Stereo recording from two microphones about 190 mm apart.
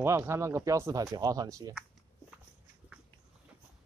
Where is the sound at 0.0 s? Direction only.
15° right (ahead or behind).